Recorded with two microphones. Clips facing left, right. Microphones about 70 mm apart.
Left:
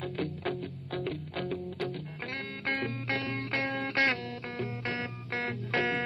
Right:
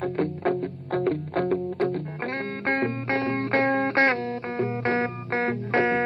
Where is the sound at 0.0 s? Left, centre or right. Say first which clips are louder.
Right 9 dB; right.